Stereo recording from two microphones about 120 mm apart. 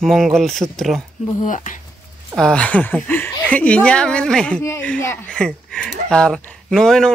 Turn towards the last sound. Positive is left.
turn(degrees=5)  # may be behind; listen again after turning